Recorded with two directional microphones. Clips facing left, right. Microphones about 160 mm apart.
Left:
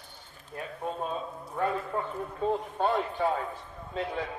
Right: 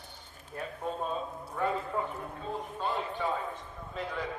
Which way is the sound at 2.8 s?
65° left (ahead or behind).